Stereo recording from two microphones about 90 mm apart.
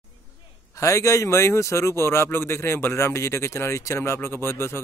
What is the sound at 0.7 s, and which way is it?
A man's voice, 35° left (ahead or behind).